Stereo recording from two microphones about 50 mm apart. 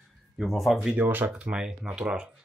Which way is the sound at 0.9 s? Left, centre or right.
Right.